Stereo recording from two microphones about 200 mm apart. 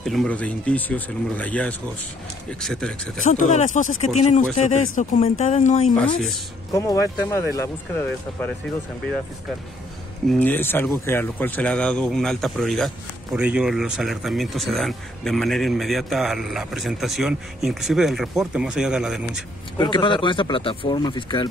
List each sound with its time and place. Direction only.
0.0 s speech: centre (ahead or behind)
3.3 s speech: 40° left (ahead or behind)
6.7 s speech: 15° left (ahead or behind)
10.3 s speech: 10° left (ahead or behind)
19.8 s speech: 25° left (ahead or behind)